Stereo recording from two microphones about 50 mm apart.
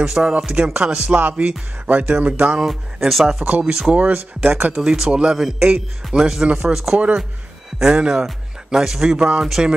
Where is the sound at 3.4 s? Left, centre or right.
Right.